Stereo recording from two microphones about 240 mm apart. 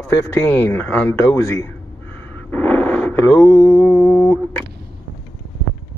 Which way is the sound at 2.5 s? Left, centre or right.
Centre.